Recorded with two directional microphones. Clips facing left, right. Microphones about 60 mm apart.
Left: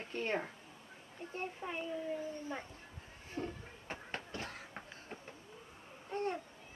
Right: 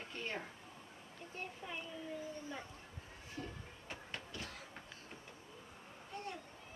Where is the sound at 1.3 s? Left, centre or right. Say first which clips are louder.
Left 5 dB; left.